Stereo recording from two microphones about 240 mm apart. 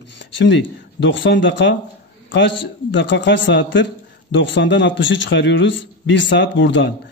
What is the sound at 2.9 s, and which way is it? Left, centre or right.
A man's voice, left.